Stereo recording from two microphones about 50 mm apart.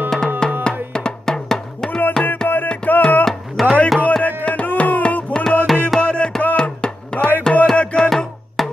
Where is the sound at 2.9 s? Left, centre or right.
Left.